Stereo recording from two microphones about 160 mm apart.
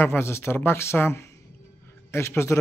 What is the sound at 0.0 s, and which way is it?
A man's voice, 15° left (ahead or behind).